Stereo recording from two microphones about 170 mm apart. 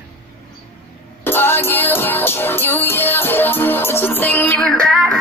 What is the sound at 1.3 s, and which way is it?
Music, 15° left (ahead or behind).